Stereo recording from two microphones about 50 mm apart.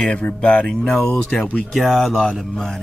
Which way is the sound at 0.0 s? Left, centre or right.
Left.